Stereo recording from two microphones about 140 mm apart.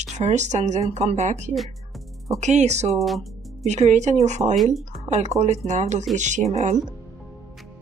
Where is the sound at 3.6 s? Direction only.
55° right (ahead or behind).